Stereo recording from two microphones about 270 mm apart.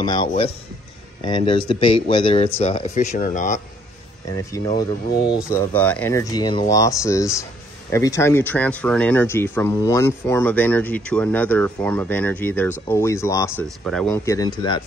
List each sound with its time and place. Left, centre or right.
0.0 s speech: centre
4.3 s speech: centre